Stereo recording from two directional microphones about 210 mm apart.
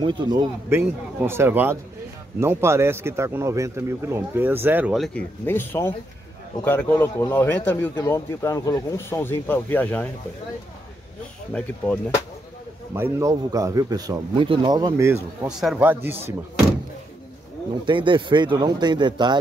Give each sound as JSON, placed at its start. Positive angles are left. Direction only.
{"t": 0.0, "sound": "speech", "side_deg": -20}
{"t": 11.5, "sound": "speech", "side_deg": 5}
{"t": 12.9, "sound": "speech", "side_deg": -15}
{"t": 17.8, "sound": "speech", "side_deg": -25}